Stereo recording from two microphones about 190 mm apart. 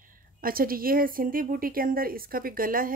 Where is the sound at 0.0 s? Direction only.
45° right (ahead or behind).